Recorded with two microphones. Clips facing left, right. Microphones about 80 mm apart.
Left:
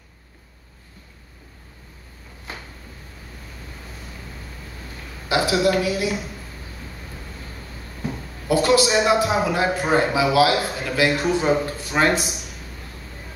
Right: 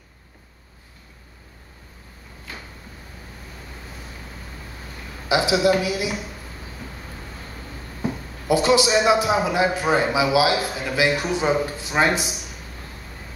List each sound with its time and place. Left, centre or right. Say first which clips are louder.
5.3 s a man's voice: right 1 dB; centre
8.0 s a sound: right 2 dB; centre
9.0 s a man's voice: even; centre